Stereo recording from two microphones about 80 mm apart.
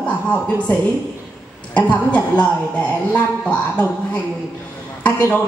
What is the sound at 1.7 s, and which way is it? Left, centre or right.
Speech, centre.